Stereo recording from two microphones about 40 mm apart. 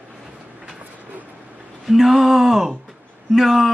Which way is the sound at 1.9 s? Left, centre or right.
Centre.